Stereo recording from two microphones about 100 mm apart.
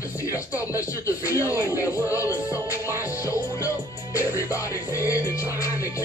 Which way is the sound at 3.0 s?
30° left (ahead or behind).